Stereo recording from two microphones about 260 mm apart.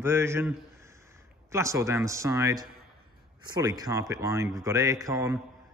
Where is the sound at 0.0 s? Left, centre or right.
Centre.